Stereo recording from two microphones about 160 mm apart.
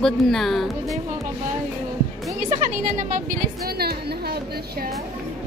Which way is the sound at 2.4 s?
50° right (ahead or behind).